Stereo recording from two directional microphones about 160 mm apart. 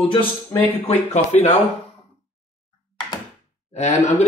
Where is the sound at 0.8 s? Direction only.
45° left (ahead or behind).